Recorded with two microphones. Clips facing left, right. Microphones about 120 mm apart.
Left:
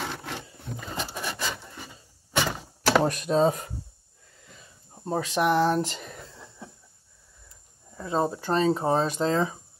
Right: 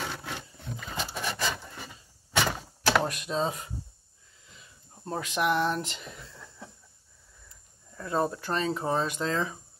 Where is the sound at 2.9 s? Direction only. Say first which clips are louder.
Left 4 dB; 35° left (ahead or behind).